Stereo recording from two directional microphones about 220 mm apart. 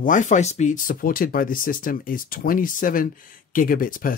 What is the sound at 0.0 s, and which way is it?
Speech, 35° left (ahead or behind).